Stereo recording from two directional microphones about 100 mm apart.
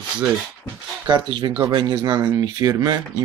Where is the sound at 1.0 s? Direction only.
50° right (ahead or behind).